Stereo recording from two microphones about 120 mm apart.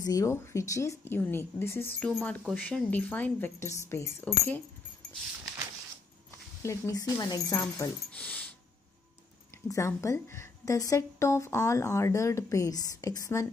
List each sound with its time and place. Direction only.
0.0 s a woman's voice: 30° left (ahead or behind)
2.0 s a woman's voice: 5° left (ahead or behind); by 4.1 s 25° left (ahead or behind)
4.2 s a woman's voice: 15° left (ahead or behind)
6.6 s a woman's voice: 25° left (ahead or behind)
8.1 s a sound: 10° left (ahead or behind)
9.7 s a woman's voice: 25° left (ahead or behind)